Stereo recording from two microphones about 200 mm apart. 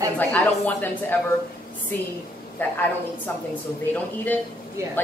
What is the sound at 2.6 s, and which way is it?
Speech, 10° left (ahead or behind).